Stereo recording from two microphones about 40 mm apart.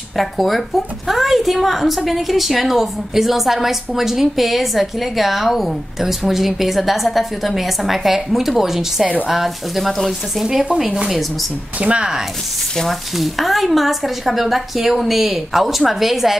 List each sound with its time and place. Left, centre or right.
0.1 s a woman's voice: centre
10.4 s speech: centre
11.8 s speech: right
13.1 s a woman's voice: centre